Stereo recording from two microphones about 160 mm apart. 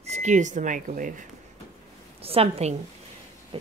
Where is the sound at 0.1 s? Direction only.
50° right (ahead or behind).